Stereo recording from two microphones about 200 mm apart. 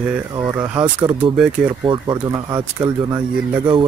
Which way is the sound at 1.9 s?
20° right (ahead or behind).